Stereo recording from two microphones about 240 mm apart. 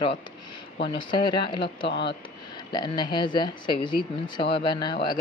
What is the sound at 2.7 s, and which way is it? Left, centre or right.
A woman's voice, centre.